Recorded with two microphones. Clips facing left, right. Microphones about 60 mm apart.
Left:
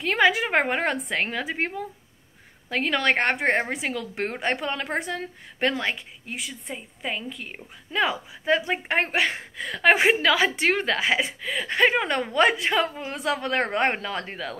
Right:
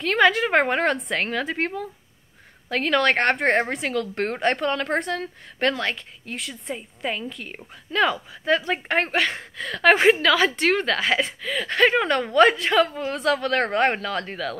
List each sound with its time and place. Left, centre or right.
0.0 s a woman's voice: centre
7.9 s a woman's voice: centre